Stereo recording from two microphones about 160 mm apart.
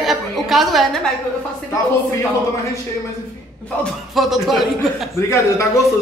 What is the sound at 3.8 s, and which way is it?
Speech, centre (ahead or behind).